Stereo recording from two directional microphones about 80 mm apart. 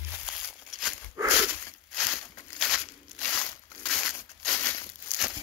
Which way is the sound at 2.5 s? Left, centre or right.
Centre.